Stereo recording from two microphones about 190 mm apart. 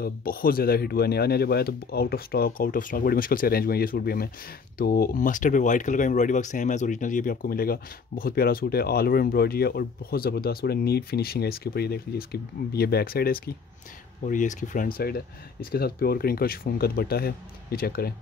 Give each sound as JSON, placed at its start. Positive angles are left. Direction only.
{"t": 0.0, "sound": "speech", "side_deg": 50}